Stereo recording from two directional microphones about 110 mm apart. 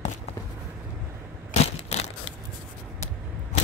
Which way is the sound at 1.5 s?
80° left.